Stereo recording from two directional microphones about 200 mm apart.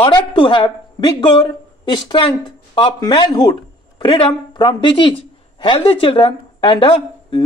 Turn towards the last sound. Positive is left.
turn(degrees=25)  # may be behind; listen again after turning